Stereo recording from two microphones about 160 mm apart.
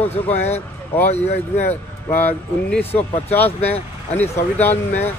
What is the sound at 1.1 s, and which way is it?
Speech, 40° left (ahead or behind).